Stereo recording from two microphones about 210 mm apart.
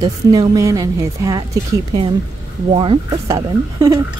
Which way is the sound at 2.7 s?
25° right (ahead or behind).